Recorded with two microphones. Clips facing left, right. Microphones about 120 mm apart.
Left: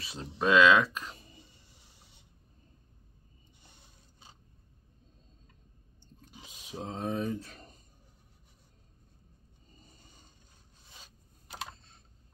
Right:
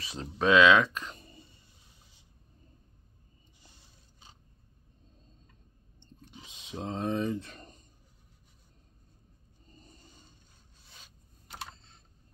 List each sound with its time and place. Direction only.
0.0 s speech: centre (ahead or behind)
2.0 s a sound: 65° left (ahead or behind)
6.5 s speech: 5° left (ahead or behind)